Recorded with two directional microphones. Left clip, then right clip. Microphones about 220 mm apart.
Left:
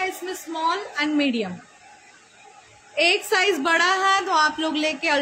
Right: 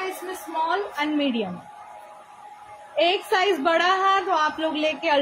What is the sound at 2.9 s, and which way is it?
A woman's voice, 20° left (ahead or behind).